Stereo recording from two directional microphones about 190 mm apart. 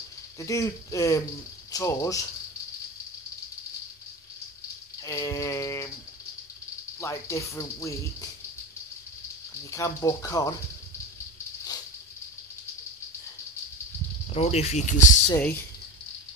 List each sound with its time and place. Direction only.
0.4 s speech: 15° left (ahead or behind)
5.0 s speech: 15° left (ahead or behind)
7.0 s speech: 15° left (ahead or behind)
9.7 s speech: 15° left (ahead or behind)
14.3 s speech: 35° left (ahead or behind)
15.2 s speech: 10° left (ahead or behind)